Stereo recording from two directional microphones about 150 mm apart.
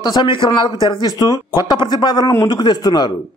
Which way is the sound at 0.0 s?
30° left (ahead or behind).